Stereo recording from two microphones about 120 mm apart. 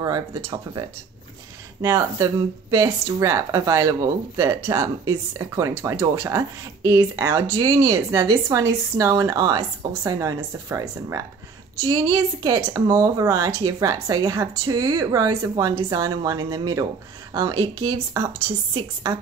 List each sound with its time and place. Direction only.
0.0 s speech: 35° right (ahead or behind)